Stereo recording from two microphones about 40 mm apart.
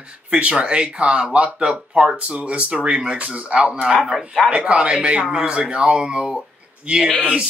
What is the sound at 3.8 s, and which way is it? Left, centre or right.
Speech, centre.